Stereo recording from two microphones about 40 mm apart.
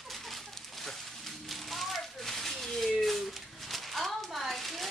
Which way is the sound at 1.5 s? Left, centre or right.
Centre.